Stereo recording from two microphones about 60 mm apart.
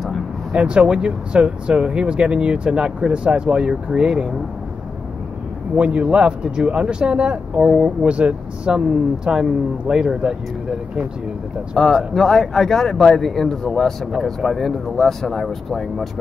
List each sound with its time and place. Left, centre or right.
0.5 s speech: centre
5.8 s speech: right
11.7 s speech: centre